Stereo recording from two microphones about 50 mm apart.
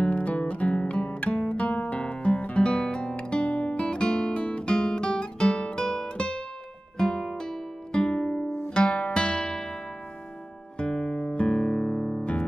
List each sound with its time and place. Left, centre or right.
0.0 s music: left
1.4 s guitar: left
7.0 s music: centre
10.8 s guitar: centre
11.3 s music: centre
12.2 s music: left